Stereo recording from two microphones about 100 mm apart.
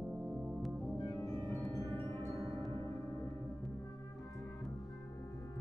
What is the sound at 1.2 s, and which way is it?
Marimba, 25° left (ahead or behind).